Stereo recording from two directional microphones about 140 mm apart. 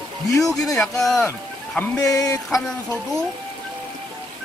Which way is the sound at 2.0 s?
25° left (ahead or behind).